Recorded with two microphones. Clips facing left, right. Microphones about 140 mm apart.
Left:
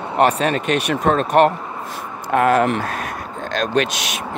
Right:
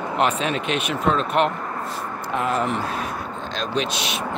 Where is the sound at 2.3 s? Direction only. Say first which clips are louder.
Left 8 dB; 65° left (ahead or behind); by 3.6 s 85° left.